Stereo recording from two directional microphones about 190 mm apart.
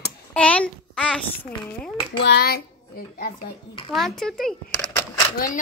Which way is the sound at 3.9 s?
Centre (ahead or behind).